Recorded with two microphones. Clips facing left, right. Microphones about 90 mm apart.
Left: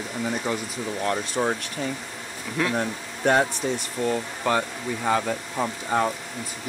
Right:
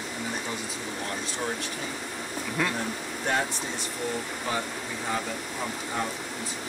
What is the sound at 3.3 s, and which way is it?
Speech, 60° left (ahead or behind).